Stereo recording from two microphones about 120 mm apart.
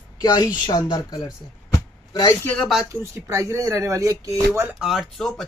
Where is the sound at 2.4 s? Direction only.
10° left (ahead or behind).